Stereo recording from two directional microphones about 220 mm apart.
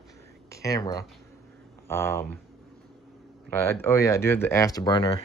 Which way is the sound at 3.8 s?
10° left (ahead or behind).